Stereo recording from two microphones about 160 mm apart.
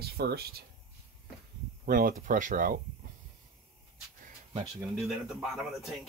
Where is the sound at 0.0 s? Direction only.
80° right.